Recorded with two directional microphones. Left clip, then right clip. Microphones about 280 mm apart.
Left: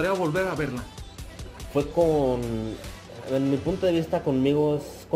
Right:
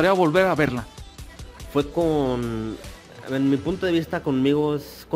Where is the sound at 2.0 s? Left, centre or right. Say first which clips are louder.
Left 2 dB; right.